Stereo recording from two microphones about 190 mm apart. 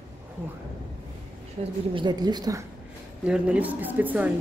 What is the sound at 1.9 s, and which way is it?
Speech, 25° right (ahead or behind).